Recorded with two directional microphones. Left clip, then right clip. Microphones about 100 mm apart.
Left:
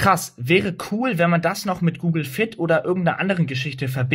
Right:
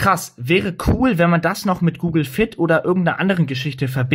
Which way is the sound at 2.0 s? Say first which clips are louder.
Right 5 dB; 45° right (ahead or behind).